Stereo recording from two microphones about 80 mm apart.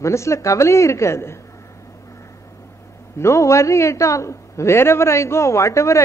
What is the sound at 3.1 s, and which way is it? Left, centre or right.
A man's voice, left.